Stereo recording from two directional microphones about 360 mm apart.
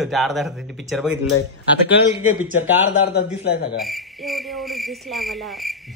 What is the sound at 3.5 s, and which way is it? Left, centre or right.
Speech, left.